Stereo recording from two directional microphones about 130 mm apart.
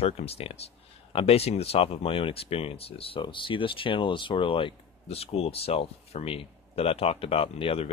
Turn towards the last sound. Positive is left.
turn(degrees=45)  # may be behind; listen again after turning